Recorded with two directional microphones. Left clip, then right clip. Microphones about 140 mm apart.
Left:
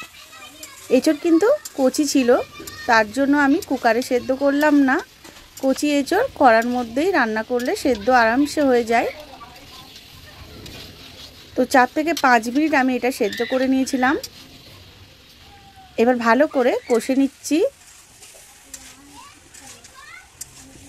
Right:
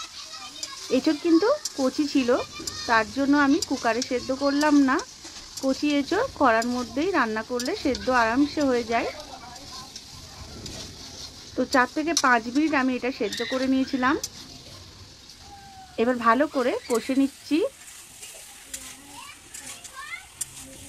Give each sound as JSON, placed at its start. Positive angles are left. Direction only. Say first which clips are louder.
{"t": 0.8, "sound": "speech", "louder": "left 6 dB", "side_deg": 35}
{"t": 7.2, "sound": "speech", "louder": "left 6 dB", "side_deg": 25}
{"t": 7.5, "sound": "speech", "louder": "left 6 dB", "side_deg": 35}
{"t": 11.5, "sound": "speech", "louder": "left 6 dB", "side_deg": 35}
{"t": 16.0, "sound": "speech", "louder": "left 5 dB", "side_deg": 35}